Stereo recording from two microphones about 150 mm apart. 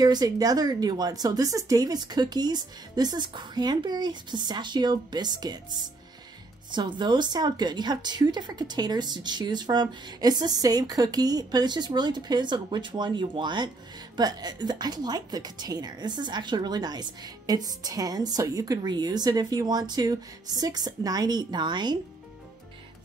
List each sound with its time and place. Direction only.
0.0 s a woman's voice: 25° right (ahead or behind)
6.7 s a woman's voice: 30° right (ahead or behind)